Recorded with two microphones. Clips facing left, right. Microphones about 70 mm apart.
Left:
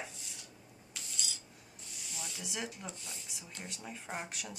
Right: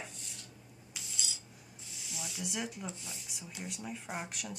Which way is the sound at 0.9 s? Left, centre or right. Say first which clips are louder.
Even; centre.